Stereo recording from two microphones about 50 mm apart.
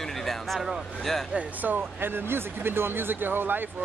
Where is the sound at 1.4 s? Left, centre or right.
Right.